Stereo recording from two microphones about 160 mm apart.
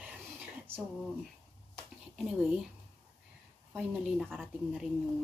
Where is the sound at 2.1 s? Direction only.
5° right (ahead or behind).